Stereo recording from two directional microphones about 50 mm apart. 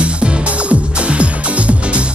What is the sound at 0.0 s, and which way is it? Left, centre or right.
Music, right.